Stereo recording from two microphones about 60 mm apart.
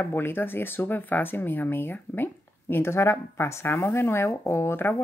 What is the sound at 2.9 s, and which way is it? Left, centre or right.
Speech, left.